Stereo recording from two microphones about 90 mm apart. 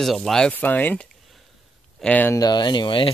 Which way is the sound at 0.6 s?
20° left (ahead or behind).